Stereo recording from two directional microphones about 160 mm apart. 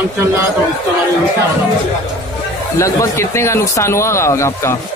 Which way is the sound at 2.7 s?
20° left (ahead or behind).